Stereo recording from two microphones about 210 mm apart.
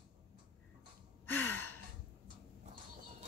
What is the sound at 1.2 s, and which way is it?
Gasp, 10° left (ahead or behind).